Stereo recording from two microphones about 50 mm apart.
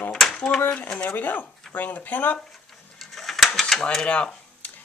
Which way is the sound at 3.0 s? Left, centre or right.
Centre.